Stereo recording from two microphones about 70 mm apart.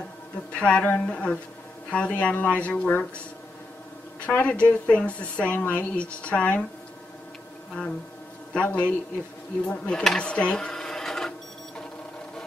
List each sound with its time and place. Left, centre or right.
0.5 s a woman's voice: centre
4.3 s a woman's voice: left
8.6 s a woman's voice: left
10.0 s sewing machine: centre